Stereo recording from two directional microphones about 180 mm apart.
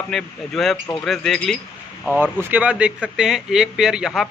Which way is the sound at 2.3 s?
10° right (ahead or behind).